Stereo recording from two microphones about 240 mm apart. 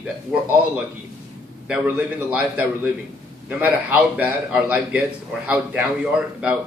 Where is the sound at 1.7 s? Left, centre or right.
Centre.